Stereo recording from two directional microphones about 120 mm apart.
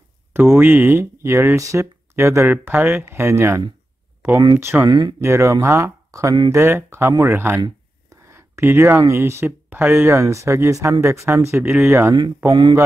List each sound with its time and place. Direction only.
0.3 s speech: 20° right (ahead or behind)
4.8 s speech: 35° right (ahead or behind)
5.2 s speech: 25° right (ahead or behind)
11.6 s speech: 5° right (ahead or behind)
11.9 s speech: 20° right (ahead or behind)